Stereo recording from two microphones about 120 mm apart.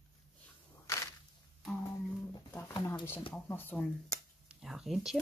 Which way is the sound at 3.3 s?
15° left (ahead or behind).